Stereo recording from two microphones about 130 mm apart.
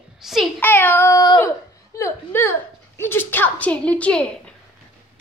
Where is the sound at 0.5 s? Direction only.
15° left (ahead or behind).